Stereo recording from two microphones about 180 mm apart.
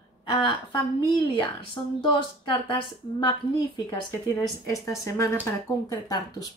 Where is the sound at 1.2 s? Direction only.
25° left (ahead or behind).